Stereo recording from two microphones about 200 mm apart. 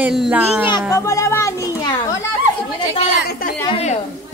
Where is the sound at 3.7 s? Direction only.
35° left (ahead or behind).